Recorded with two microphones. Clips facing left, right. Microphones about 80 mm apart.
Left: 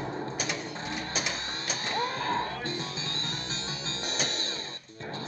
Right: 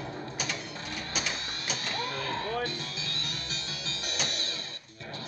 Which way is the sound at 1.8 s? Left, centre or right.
Left.